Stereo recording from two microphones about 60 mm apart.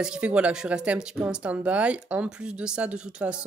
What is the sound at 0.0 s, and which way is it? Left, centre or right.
Speech, centre.